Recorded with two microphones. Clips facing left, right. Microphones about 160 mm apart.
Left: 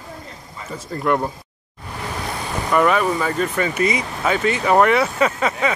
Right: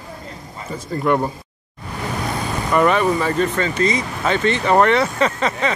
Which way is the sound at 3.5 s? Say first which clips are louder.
Right 1 dB; 10° left (ahead or behind).